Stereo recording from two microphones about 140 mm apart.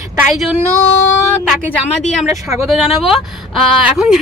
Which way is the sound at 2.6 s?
Centre (ahead or behind).